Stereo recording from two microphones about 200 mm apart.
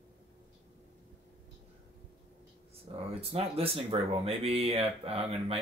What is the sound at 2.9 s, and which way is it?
Speech, 25° right (ahead or behind).